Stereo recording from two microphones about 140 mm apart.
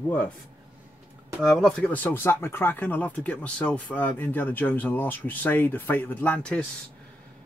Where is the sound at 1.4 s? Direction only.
Centre (ahead or behind).